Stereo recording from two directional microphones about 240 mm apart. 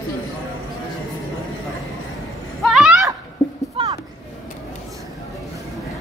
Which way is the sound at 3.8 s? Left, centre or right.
Right.